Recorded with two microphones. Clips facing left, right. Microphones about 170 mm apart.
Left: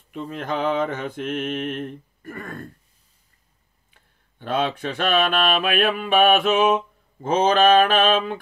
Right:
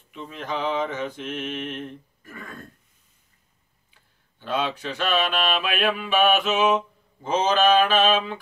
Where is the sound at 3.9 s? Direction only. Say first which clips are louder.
Left 4 dB; 55° left (ahead or behind).